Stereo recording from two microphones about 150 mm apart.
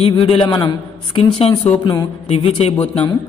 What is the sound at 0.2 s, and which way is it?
Speech, 35° left (ahead or behind).